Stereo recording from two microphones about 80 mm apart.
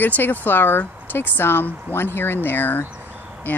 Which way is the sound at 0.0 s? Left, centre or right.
Left.